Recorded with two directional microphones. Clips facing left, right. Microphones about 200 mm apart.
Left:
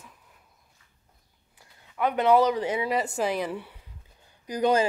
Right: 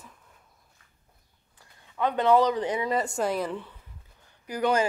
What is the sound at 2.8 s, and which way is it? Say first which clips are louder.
Speech: even; centre (ahead or behind).